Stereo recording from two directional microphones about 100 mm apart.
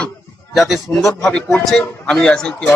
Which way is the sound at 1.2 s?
10° left (ahead or behind).